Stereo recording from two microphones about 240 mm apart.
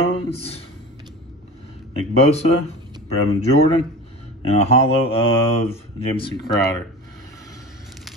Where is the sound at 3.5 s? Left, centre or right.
Left.